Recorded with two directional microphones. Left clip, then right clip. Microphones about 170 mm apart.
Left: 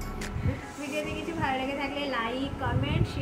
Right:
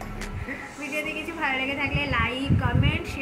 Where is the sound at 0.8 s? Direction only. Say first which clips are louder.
Right 3 dB; centre (ahead or behind).